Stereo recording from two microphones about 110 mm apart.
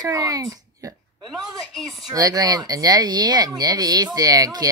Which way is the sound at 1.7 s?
Centre (ahead or behind).